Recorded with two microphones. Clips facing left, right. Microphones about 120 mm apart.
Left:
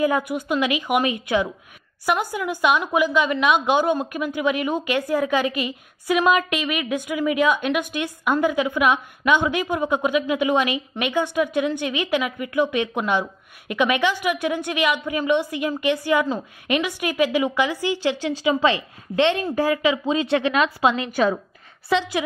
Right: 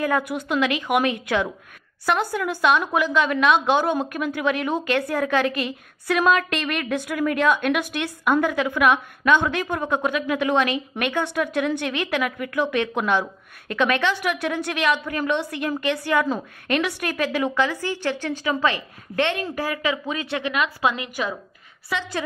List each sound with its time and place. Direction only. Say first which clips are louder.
0.0 s a woman's voice: left 2 dB; centre (ahead or behind)
16.6 s a woman's voice: left 1 dB; 5° left (ahead or behind)
17.9 s a woman's voice: left 3 dB; 55° right (ahead or behind)
18.4 s a woman's voice: left 4 dB; 20° left (ahead or behind)